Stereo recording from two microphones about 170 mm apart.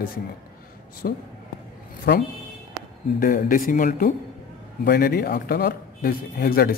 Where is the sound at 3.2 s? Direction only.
55° left (ahead or behind).